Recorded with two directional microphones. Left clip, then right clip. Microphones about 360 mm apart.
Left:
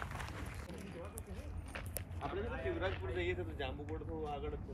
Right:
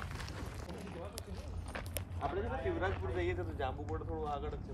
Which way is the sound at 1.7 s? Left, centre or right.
Right.